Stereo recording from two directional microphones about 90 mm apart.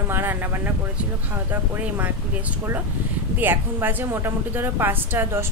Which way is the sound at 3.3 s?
25° right (ahead or behind).